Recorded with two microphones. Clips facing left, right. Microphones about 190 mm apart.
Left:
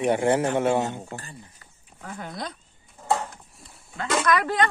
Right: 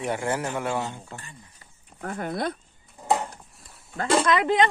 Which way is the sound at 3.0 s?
15° right (ahead or behind).